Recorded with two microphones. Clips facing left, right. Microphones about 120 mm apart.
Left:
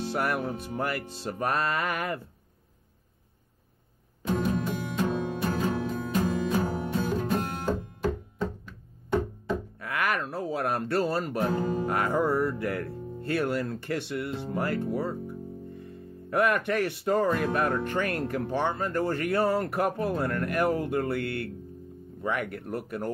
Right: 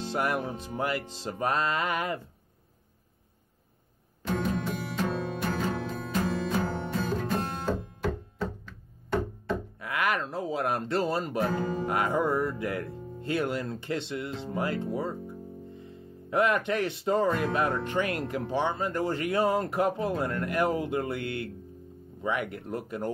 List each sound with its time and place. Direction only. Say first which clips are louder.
0.1 s speech: right 1 dB; 15° right (ahead or behind)
4.3 s music: left 2 dB; 10° left (ahead or behind)
4.7 s music: left 2 dB; 20° left (ahead or behind)
5.4 s music: left 2 dB; 10° left (ahead or behind)
9.8 s a sound: right 1 dB; 15° right (ahead or behind)
10.2 s speech: even; 20° right (ahead or behind)
11.6 s speech: left 2 dB; 10° left (ahead or behind)
11.9 s speech: even; 15° right (ahead or behind)
16.3 s speech: even; 15° right (ahead or behind)